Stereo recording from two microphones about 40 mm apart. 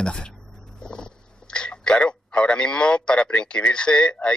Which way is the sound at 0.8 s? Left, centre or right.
Left.